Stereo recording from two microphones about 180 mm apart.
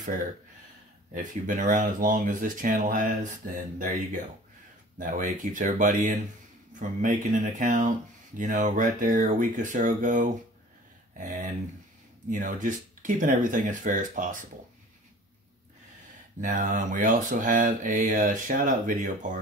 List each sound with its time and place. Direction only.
1.1 s speech: 45° right (ahead or behind)
16.3 s speech: 45° right (ahead or behind)